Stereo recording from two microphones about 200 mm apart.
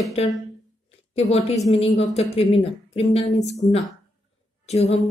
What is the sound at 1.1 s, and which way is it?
A woman's voice, 35° left (ahead or behind).